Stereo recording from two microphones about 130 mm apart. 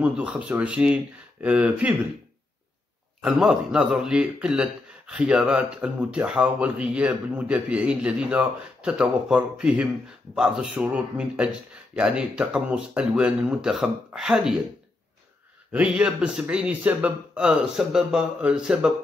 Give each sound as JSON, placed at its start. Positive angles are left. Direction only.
{"t": 0.0, "sound": "speech", "side_deg": -10}
{"t": 3.2, "sound": "speech", "side_deg": 0}
{"t": 15.7, "sound": "speech", "side_deg": -5}